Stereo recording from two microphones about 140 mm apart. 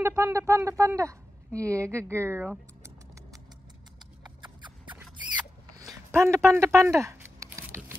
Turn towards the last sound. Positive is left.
turn(degrees=-20)  # may be behind; listen again after turning